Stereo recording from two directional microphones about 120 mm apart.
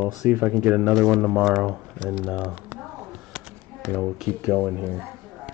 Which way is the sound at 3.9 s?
5° right (ahead or behind).